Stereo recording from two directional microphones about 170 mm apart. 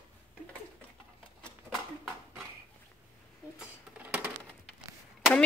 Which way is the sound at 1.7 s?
15° right (ahead or behind).